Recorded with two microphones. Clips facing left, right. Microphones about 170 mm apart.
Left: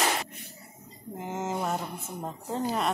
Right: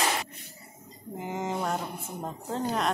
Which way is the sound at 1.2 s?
Centre (ahead or behind).